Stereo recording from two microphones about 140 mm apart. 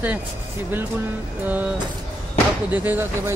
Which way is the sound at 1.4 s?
10° right (ahead or behind).